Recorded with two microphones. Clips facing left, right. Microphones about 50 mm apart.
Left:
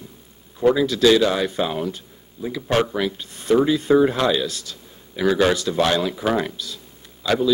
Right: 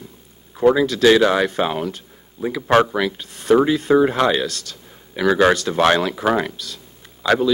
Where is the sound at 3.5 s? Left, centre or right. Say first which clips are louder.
Right 1 dB; right.